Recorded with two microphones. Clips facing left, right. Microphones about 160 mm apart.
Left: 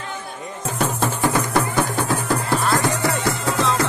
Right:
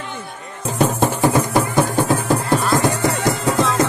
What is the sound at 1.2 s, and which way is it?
Music, 20° right (ahead or behind).